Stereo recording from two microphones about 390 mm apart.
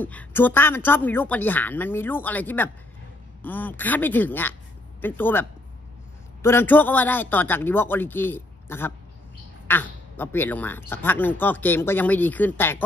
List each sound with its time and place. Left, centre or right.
0.0 s speech: centre